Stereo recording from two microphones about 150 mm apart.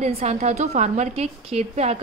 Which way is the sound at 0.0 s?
45° right (ahead or behind).